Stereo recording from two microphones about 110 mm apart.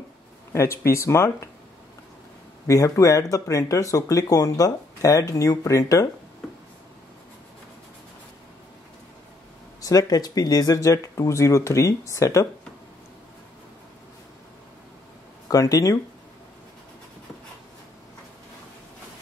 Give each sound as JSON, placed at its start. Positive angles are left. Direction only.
{"t": 0.5, "sound": "speech", "side_deg": 25}
{"t": 2.6, "sound": "speech", "side_deg": 30}
{"t": 9.8, "sound": "speech", "side_deg": 35}
{"t": 15.4, "sound": "speech", "side_deg": 30}